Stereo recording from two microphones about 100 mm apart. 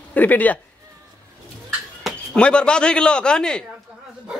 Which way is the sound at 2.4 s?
10° left (ahead or behind).